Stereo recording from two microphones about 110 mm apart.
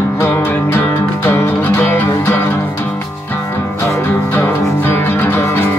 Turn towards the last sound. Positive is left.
turn(degrees=20)  # may be behind; listen again after turning